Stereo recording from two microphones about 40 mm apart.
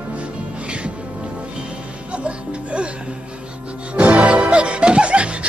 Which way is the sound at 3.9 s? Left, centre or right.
Right.